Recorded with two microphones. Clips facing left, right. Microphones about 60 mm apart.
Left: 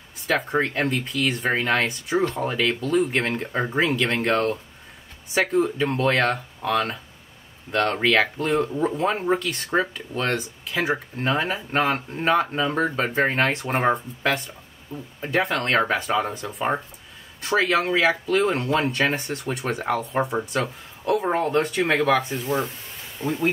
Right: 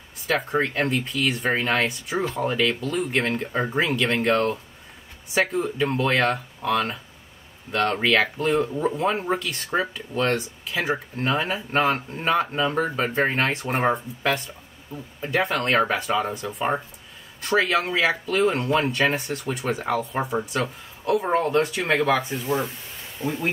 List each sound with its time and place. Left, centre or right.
0.3 s speech: centre
23.2 s speech: left